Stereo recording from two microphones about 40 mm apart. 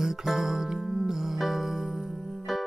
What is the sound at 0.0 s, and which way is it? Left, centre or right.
Music, centre.